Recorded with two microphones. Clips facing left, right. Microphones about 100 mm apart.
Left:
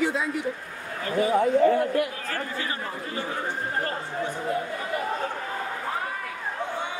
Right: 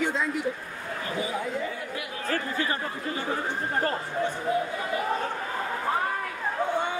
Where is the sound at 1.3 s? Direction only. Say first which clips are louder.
Left 11 dB; 55° left (ahead or behind).